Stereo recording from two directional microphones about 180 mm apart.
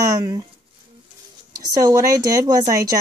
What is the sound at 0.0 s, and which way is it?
Speech, 20° right (ahead or behind).